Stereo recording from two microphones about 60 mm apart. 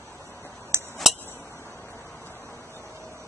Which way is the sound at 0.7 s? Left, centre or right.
Right.